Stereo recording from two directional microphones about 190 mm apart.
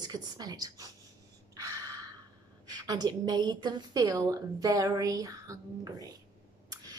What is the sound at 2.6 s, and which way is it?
A woman's voice, 20° right (ahead or behind).